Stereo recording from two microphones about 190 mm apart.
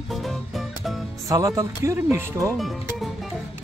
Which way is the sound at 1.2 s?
15° right (ahead or behind).